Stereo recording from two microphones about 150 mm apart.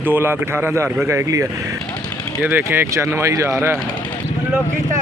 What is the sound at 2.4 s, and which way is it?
A man's voice, 15° right (ahead or behind).